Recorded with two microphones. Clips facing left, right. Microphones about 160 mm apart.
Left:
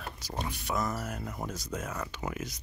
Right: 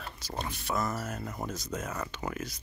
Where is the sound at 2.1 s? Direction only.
10° left (ahead or behind).